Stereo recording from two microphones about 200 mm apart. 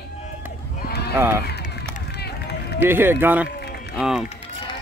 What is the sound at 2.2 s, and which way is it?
Run, 55° left (ahead or behind).